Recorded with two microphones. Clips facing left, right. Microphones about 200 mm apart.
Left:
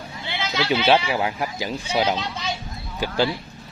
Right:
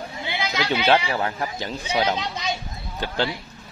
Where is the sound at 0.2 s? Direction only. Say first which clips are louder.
Left 1 dB; 15° right (ahead or behind).